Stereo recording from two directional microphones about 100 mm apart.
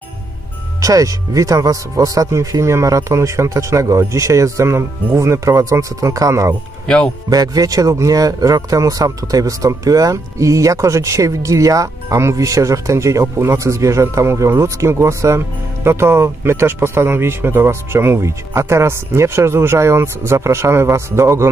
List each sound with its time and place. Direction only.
0.7 s speech: 35° right (ahead or behind)